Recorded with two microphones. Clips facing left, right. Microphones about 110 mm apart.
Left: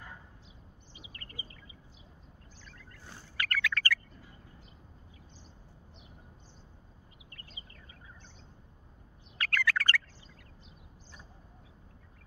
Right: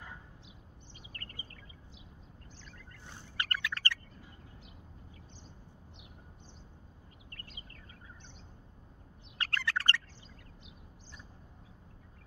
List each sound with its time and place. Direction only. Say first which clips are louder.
0.9 s a sound: even; 50° right (ahead or behind)
3.3 s bird: left 4 dB; 25° right (ahead or behind)
9.4 s bird: left 4 dB; 30° right (ahead or behind)